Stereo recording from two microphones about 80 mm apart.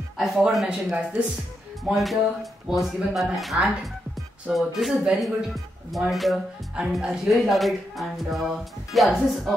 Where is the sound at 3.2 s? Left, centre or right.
Centre.